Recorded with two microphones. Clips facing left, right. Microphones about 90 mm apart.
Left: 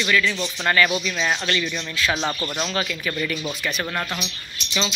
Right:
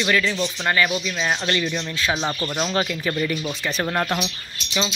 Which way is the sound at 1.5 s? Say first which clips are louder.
Right 2 dB; 30° right (ahead or behind).